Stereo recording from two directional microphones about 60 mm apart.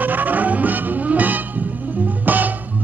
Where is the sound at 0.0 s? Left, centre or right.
Right.